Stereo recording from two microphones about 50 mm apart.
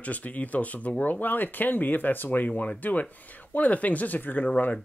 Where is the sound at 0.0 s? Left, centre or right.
Left.